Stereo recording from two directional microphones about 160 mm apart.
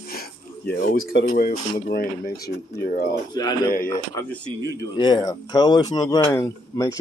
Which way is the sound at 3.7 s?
65° left (ahead or behind).